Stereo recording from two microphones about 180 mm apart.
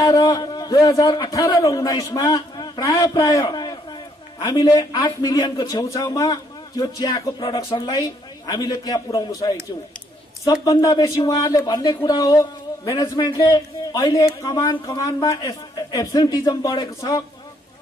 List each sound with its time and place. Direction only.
0.0 s a man's voice: 20° left (ahead or behind)